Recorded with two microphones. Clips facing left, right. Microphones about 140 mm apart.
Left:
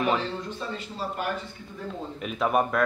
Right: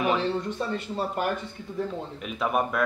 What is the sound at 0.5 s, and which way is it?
Speech, 55° right (ahead or behind).